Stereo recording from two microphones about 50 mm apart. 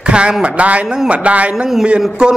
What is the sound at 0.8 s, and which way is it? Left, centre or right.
Speech, centre.